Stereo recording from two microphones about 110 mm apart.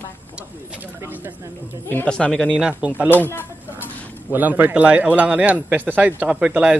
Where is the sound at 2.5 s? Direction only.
10° right (ahead or behind).